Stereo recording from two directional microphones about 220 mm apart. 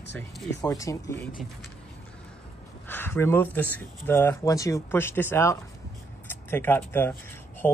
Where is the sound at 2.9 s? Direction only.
10° left (ahead or behind).